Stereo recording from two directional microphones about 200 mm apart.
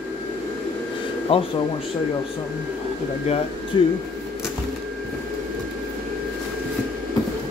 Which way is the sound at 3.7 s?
20° left (ahead or behind).